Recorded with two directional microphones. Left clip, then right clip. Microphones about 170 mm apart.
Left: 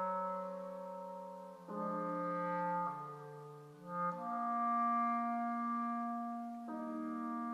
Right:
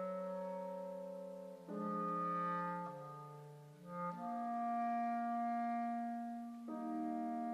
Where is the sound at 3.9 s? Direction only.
55° right (ahead or behind).